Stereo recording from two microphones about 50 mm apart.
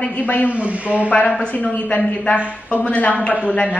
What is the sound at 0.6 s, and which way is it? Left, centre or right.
Speech, right.